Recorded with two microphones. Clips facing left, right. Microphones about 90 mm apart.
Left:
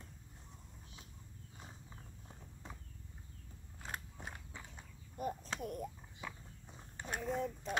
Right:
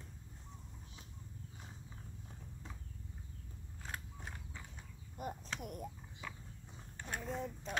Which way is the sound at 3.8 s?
15° left (ahead or behind).